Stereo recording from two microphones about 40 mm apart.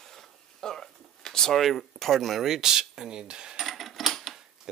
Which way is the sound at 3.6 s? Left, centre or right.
Centre.